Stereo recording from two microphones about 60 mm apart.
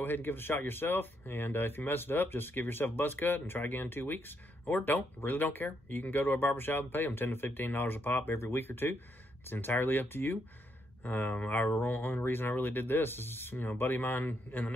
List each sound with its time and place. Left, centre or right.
0.0 s speech: left